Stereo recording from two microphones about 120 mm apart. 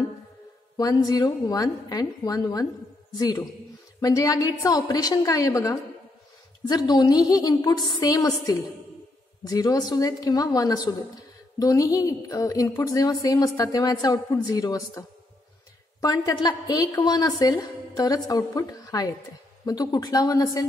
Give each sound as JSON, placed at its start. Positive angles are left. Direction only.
{"t": 0.7, "sound": "a woman's voice", "side_deg": 30}